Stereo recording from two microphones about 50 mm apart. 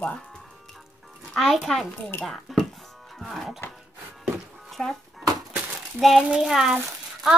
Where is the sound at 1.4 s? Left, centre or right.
Centre.